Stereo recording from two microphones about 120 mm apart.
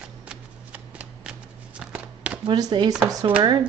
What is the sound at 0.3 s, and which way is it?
Shuffling cards, 10° right (ahead or behind).